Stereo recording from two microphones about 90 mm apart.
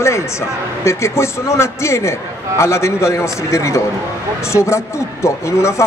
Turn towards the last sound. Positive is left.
turn(degrees=30)  # may be behind; listen again after turning